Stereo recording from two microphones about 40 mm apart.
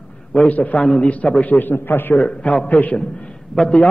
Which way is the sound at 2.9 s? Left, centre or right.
Left.